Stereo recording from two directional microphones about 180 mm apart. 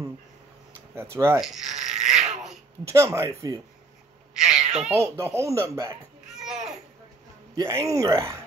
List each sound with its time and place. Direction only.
1.1 s speech: 15° right (ahead or behind)
1.4 s speech: centre (ahead or behind)
2.9 s speech: 15° right (ahead or behind)
4.5 s speech: 5° right (ahead or behind)
4.9 s speech: 15° right (ahead or behind)
6.3 s a sound: 5° right (ahead or behind)
7.5 s speech: 15° right (ahead or behind)